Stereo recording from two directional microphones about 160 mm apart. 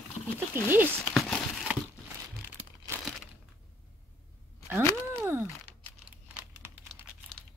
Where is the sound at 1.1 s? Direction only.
Centre (ahead or behind).